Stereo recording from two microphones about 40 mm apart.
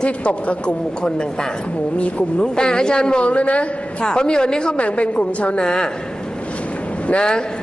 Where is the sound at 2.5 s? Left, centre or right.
Centre.